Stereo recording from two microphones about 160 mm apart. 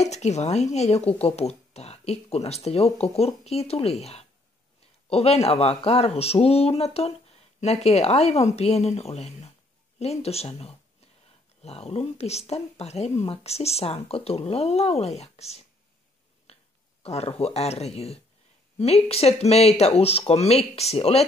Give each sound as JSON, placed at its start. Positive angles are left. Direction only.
{"t": 0.0, "sound": "speech", "side_deg": 45}
{"t": 16.5, "sound": "a sound", "side_deg": 40}
{"t": 17.0, "sound": "speech", "side_deg": 40}